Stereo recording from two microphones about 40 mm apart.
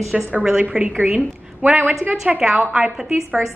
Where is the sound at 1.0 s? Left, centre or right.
Right.